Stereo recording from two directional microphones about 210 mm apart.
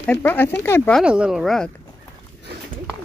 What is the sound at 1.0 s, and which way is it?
Speech, 5° right (ahead or behind).